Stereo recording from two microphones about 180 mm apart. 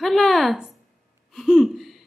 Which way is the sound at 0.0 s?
Centre (ahead or behind).